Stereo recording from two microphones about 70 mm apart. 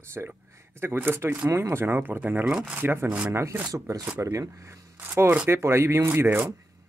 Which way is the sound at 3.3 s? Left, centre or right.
Right.